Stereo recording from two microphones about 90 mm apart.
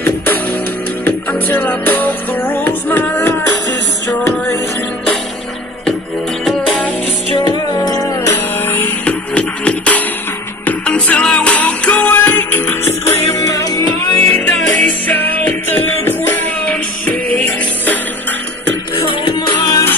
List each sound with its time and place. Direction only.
0.0 s music: 20° left (ahead or behind)
7.4 s music: 45° left (ahead or behind)
8.3 s music: 25° left (ahead or behind)
14.1 s music: 15° left (ahead or behind)
18.9 s music: 65° left (ahead or behind)